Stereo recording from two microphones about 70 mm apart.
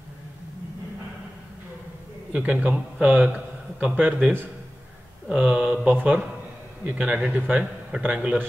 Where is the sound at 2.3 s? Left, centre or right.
Centre.